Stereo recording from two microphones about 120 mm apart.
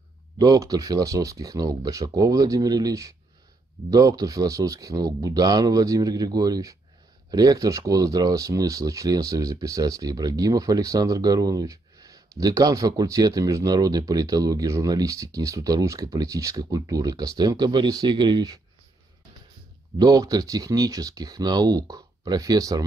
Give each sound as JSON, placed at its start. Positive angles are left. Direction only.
{"t": 0.4, "sound": "speech", "side_deg": -30}
{"t": 20.0, "sound": "speech", "side_deg": -30}